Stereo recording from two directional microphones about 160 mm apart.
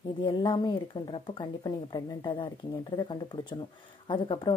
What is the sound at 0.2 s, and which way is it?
A woman's voice, 30° left (ahead or behind).